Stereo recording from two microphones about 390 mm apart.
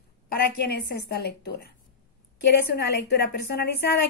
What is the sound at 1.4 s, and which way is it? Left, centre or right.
Speech, left.